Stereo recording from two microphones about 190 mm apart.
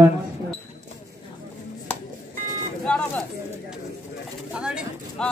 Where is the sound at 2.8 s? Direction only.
5° left (ahead or behind).